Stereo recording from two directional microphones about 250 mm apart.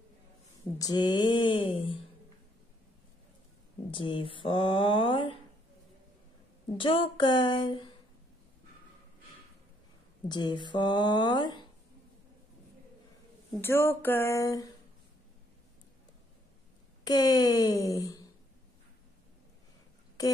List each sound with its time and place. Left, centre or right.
0.7 s speech: centre
3.9 s speech: left
6.8 s speech: centre
10.2 s speech: centre
13.6 s speech: centre
17.0 s speech: centre
20.2 s a sound: centre